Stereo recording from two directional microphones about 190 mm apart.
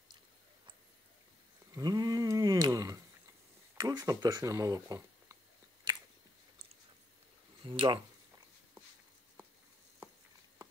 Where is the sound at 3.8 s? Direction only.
20° right (ahead or behind).